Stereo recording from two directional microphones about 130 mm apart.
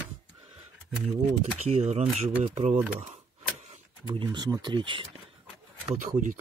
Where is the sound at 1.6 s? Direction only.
60° right (ahead or behind).